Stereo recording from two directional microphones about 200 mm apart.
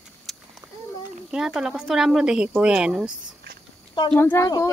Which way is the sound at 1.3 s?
5° right (ahead or behind).